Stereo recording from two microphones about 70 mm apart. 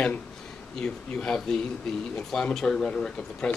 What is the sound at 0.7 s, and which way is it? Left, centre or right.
Speech, centre.